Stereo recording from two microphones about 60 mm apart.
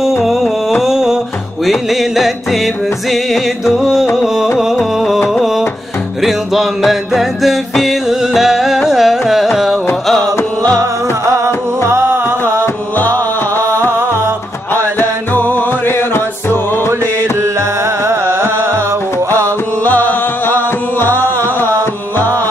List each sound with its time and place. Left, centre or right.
0.2 s music: centre
10.8 s music: right
12.9 s music: left
17.4 s music: right
19.8 s music: left